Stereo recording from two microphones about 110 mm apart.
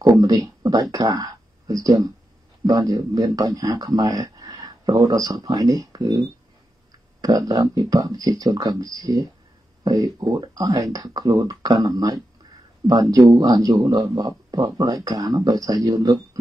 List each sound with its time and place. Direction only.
0.0 s speech: 35° right (ahead or behind)
6.9 s clicking: 35° right (ahead or behind)
7.7 s speech: 35° right (ahead or behind)
13.7 s a man's voice: 50° right (ahead or behind)
14.5 s speech: 35° right (ahead or behind)